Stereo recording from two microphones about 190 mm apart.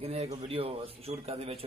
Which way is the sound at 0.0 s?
35° right (ahead or behind).